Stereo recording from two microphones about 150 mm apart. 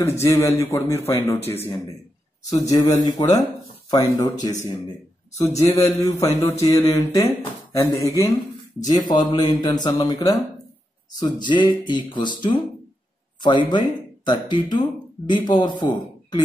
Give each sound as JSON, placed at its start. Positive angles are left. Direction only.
{"t": 0.0, "sound": "a man's voice", "side_deg": 20}
{"t": 11.4, "sound": "speech", "side_deg": 30}